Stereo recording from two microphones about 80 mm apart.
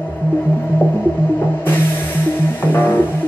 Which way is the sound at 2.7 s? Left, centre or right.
Left.